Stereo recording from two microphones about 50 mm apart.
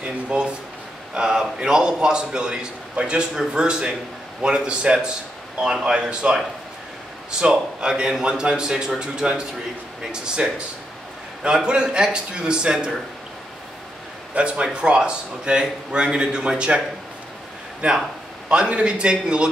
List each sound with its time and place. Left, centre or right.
0.0 s a man's voice: centre
14.3 s speech: right
17.8 s speech: right